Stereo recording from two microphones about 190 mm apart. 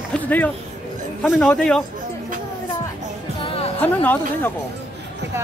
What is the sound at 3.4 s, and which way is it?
Music, 30° left (ahead or behind).